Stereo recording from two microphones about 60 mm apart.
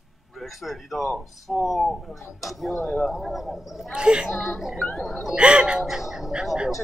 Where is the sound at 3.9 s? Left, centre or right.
Centre.